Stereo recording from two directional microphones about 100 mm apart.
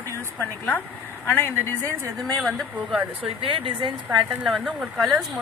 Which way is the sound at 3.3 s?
65° right (ahead or behind).